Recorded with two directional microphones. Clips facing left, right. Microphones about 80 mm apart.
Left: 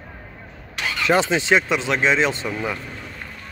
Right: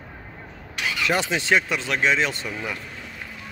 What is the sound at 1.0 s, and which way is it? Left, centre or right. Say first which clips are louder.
Speech: left 6 dB; left.